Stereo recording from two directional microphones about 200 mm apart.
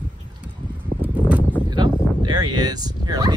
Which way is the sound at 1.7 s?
20° right (ahead or behind).